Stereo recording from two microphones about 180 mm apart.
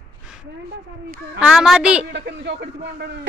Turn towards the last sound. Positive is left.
turn(degrees=-70)  # may be behind; listen again after turning